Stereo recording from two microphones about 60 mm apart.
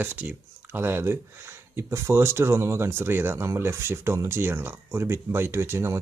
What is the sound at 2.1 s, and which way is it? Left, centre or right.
Speech, right.